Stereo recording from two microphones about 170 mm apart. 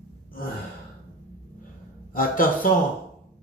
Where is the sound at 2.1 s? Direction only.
55° left (ahead or behind).